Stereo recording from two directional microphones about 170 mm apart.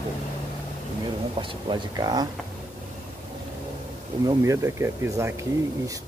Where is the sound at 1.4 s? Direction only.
30° right (ahead or behind).